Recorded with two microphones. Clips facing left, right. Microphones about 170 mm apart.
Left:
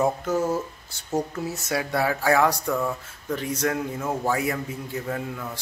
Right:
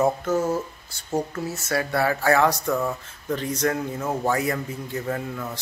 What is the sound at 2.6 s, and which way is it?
Speech, 5° right (ahead or behind).